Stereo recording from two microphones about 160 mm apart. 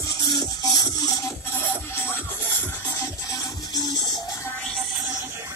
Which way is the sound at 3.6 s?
25° left (ahead or behind).